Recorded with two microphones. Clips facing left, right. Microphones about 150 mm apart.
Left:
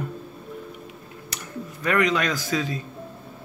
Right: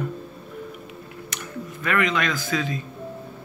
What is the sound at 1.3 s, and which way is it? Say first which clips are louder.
Tick-tock: right 2 dB; 35° left (ahead or behind).